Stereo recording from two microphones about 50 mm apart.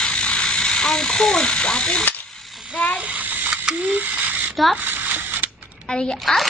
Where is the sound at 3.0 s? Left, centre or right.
Right.